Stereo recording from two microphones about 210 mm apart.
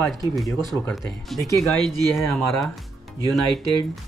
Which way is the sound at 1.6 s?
Centre (ahead or behind).